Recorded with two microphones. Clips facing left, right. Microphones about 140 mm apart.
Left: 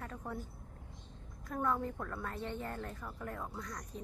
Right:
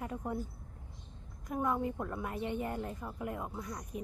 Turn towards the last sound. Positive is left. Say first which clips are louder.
# right 3 dB
turn(degrees=-20)  # may be behind; listen again after turning